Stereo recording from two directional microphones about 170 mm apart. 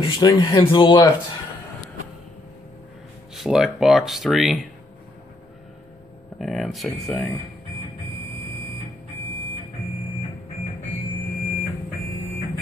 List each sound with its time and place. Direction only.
0.0 s speech: 25° left (ahead or behind)
3.3 s speech: centre (ahead or behind)
6.3 s speech: centre (ahead or behind)